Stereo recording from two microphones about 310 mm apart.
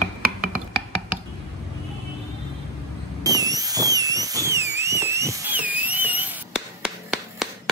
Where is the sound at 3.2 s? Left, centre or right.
Centre.